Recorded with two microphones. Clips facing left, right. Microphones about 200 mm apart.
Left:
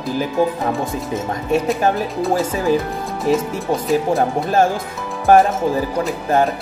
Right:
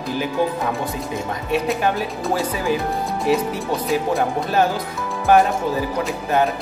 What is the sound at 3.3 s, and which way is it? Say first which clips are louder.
Speech: left 3 dB; 40° left (ahead or behind).